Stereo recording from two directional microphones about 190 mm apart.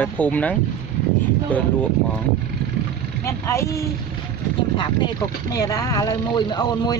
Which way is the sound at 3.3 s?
15° left (ahead or behind).